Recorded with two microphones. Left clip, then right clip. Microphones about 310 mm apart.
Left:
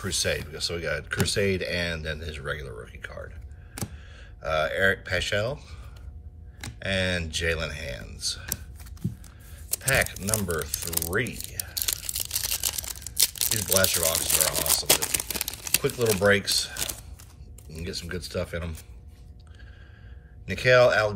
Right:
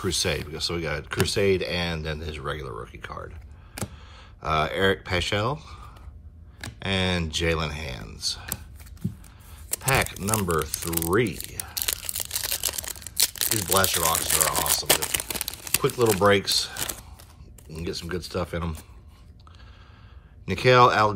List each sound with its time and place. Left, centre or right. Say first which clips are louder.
0.0 s speech: right 1 dB; centre
9.7 s a sound: even; centre
13.2 s crumpling: right 1 dB; centre
13.7 s speech: right 2 dB; centre
20.4 s speech: right 1 dB; centre